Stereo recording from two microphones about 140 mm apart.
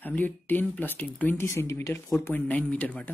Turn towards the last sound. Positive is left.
turn(degrees=10)  # may be behind; listen again after turning